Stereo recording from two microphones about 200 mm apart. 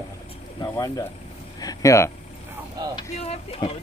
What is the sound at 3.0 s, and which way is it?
Speech, 25° left (ahead or behind).